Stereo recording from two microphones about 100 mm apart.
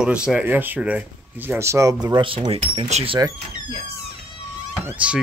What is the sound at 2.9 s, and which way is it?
Speech, 90° right.